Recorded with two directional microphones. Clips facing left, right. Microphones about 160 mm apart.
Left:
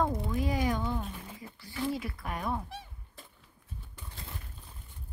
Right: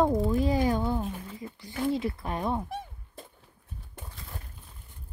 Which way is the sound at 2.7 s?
50° right (ahead or behind).